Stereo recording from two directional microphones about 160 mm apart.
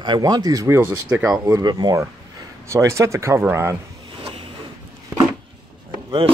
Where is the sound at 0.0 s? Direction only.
25° right (ahead or behind).